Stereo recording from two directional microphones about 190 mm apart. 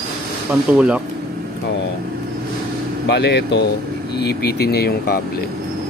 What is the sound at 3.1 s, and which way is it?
Speech, 60° left (ahead or behind).